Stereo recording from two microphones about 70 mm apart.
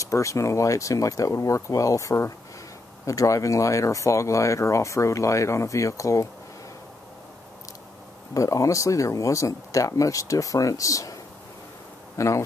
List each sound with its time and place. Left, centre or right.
0.0 s speech: left
8.4 s speech: left
12.2 s speech: left